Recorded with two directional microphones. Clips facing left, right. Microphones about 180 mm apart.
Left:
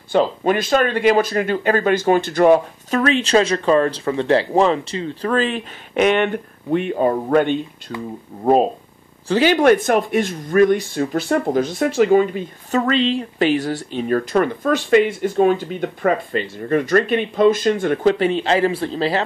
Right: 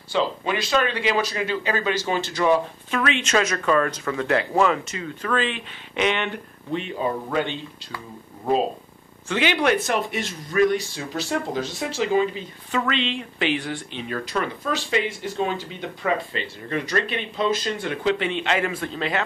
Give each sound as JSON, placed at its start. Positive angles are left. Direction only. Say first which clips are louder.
{"t": 0.1, "sound": "speech", "louder": "left 7 dB", "side_deg": 45}
{"t": 3.0, "sound": "speech", "louder": "left 6 dB", "side_deg": 35}
{"t": 9.3, "sound": "speech", "louder": "left 7 dB", "side_deg": 40}